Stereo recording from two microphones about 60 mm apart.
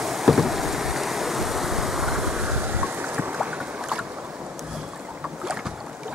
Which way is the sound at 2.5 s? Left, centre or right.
Right.